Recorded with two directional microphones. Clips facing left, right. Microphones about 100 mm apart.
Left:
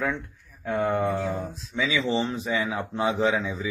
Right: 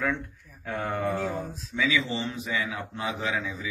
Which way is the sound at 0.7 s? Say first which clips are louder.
Left 5 dB; 15° left (ahead or behind).